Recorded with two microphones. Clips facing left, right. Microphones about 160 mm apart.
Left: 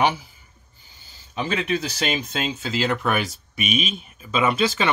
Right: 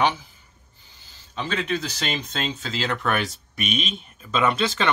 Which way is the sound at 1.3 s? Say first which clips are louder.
Left 2 dB; 10° left (ahead or behind).